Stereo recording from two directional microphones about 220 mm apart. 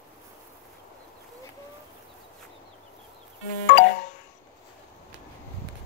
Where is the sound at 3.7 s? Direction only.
45° left (ahead or behind).